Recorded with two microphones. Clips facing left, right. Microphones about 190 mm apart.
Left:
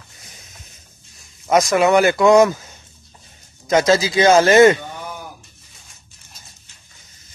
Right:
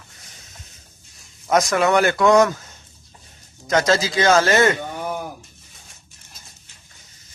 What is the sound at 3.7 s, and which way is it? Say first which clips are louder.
Speech: left 3 dB; 10° left (ahead or behind).